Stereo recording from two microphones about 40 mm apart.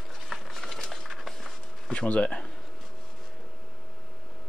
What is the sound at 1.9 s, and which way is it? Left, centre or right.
Speech, left.